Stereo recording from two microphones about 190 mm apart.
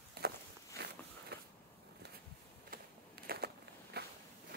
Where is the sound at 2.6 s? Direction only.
55° right (ahead or behind).